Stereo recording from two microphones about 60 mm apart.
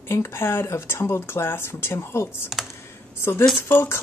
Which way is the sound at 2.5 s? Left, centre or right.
Centre.